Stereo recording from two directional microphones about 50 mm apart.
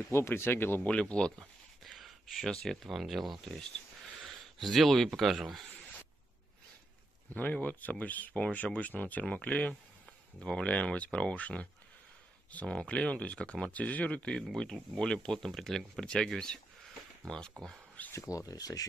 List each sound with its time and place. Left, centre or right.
0.1 s speech: left
0.8 s speech: left
2.0 s a sound: centre
2.5 s speech: centre
2.8 s speech: centre
4.6 s speech: centre
7.6 s speech: left
12.6 s speech: left
14.5 s speech: centre
18.1 s speech: left